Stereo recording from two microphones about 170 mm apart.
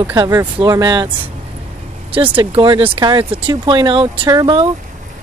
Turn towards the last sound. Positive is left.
turn(degrees=-25)  # may be behind; listen again after turning